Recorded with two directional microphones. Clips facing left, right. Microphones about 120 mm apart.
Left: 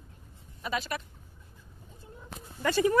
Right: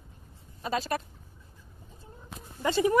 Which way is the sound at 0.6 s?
35° right (ahead or behind).